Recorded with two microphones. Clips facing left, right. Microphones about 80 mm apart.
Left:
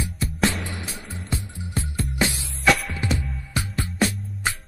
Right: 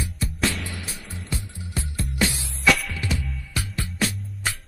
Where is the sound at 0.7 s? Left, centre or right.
Left.